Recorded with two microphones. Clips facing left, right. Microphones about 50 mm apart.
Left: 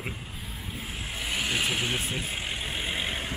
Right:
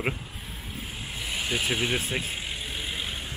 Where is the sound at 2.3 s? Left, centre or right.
Centre.